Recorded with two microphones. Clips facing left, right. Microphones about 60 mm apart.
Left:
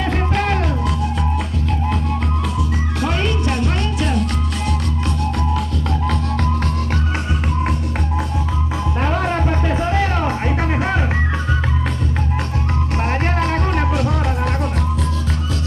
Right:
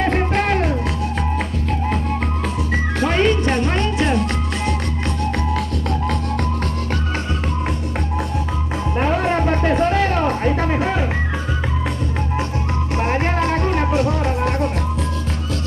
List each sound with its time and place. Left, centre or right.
0.3 s music: right
2.7 s music: right
9.0 s music: right
13.0 s music: centre
13.7 s music: right